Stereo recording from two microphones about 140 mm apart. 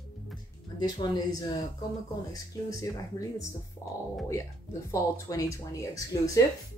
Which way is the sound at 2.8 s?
25° left (ahead or behind).